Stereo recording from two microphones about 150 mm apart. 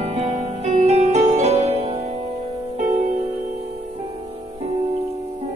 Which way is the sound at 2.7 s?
55° right (ahead or behind).